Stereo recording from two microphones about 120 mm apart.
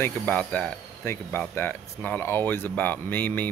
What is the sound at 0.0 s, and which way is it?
Speech, 15° left (ahead or behind).